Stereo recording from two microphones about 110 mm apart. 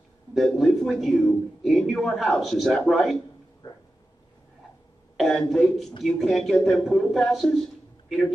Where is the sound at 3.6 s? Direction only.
35° left (ahead or behind).